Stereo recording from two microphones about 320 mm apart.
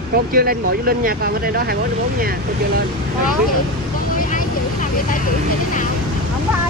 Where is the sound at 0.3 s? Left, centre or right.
Right.